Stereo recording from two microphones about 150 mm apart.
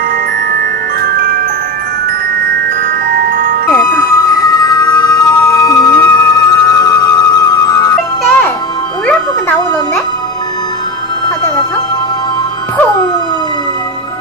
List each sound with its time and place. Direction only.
1.0 s glockenspiel: 85° right
3.1 s glockenspiel: 75° right (ahead or behind)
3.8 s emergency vehicle: 20° left (ahead or behind)
6.0 s music: 25° left (ahead or behind)